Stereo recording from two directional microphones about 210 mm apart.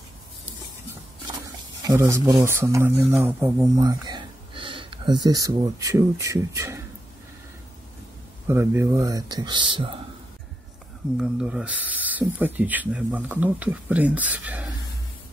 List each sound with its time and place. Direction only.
1.8 s speech: 15° right (ahead or behind)
8.5 s speech: 10° right (ahead or behind)
11.1 s speech: 5° right (ahead or behind)